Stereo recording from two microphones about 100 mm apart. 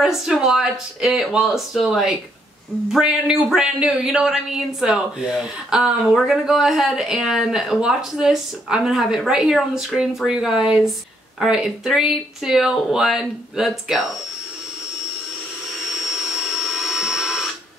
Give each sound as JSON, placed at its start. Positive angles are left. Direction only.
{"t": 0.0, "sound": "speech", "side_deg": -5}
{"t": 16.6, "sound": "smoke detector", "side_deg": 0}